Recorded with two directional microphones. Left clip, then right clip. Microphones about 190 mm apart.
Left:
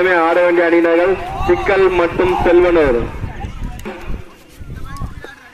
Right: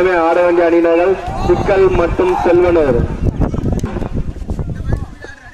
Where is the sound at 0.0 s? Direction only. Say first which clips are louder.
Right 1 dB; 40° right (ahead or behind).